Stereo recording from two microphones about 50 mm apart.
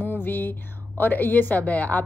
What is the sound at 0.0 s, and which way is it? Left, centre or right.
A woman's voice, left.